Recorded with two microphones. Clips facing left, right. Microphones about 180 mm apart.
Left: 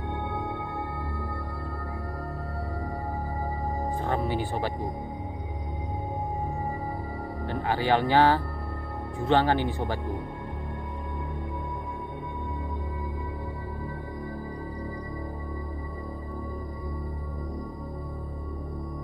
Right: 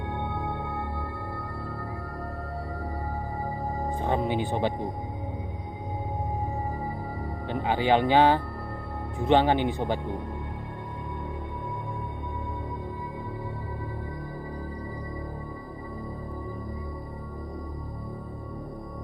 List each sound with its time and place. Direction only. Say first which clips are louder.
4.0 s speech: right 3 dB; 20° right (ahead or behind)
7.4 s speech: right 2 dB; 20° right (ahead or behind)